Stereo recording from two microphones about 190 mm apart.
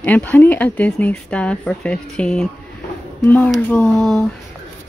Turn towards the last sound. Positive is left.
turn(degrees=0)  # may be behind; listen again after turning